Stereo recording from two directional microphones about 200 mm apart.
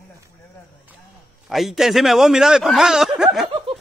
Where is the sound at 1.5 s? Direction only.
Centre (ahead or behind).